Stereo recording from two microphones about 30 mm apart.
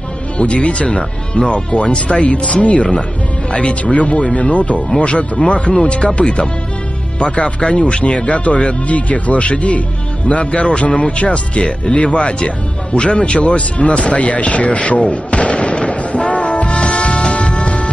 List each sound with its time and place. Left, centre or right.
0.4 s speech: left
8.8 s speech: left
13.6 s music: left